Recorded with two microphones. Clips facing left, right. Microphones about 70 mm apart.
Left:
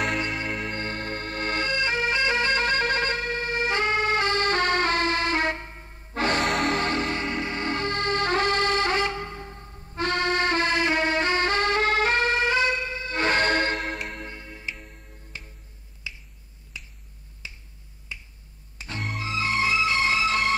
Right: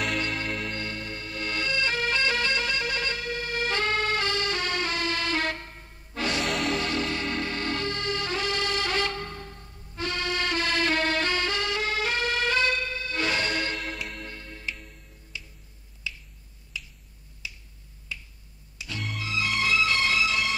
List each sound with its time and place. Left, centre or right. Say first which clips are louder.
0.5 s music: left 2 dB; centre
0.7 s music: left 4 dB; left
6.1 s music: left 5 dB; left
6.4 s music: left 3 dB; left
6.8 s music: left 3 dB; left
9.0 s music: left 3 dB; centre; by 14.2 s left
14.2 s tick-tock: left 1 dB; centre
15.3 s finger snapping: even; left
16.1 s finger snapping: right 2 dB; left
17.4 s finger snapping: right 1 dB; left
18.1 s finger snapping: right 1 dB; centre
18.8 s music: left 2 dB; left